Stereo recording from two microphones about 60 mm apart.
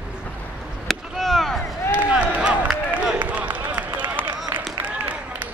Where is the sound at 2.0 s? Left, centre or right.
Centre.